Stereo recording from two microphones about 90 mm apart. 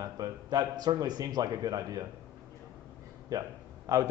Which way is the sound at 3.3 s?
40° right (ahead or behind).